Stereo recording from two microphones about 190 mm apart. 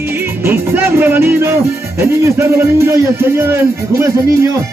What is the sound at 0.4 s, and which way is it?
Speech, 10° right (ahead or behind).